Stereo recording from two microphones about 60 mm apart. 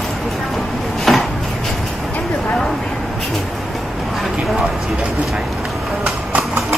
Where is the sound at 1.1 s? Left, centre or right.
Centre.